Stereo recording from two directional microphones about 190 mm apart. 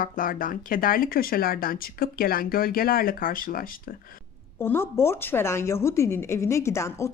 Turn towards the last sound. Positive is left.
turn(degrees=15)  # may be behind; listen again after turning